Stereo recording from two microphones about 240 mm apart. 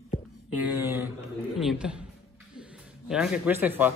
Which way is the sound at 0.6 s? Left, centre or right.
Centre.